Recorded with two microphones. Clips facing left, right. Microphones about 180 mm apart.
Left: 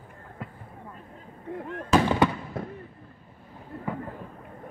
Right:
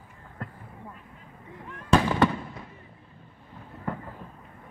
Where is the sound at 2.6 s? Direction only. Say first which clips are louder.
Left 10 dB; 55° left (ahead or behind).